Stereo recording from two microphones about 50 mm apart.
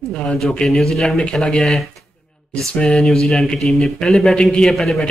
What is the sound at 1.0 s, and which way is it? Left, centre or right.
Speech, centre.